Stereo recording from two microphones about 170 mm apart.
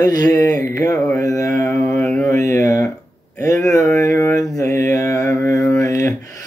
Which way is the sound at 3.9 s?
20° left (ahead or behind).